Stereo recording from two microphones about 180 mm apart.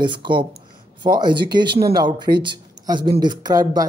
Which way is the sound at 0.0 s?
25° right (ahead or behind).